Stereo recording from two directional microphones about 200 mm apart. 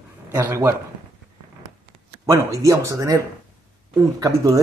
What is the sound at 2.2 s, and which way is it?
Speech, 15° right (ahead or behind).